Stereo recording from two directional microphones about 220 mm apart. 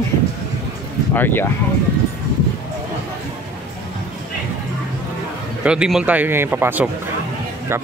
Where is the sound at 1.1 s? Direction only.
10° left (ahead or behind).